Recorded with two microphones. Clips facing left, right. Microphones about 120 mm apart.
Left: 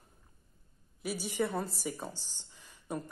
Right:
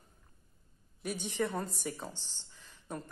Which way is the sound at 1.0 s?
5° left (ahead or behind).